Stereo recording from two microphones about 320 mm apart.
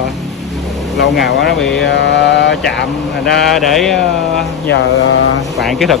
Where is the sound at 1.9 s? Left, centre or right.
Left.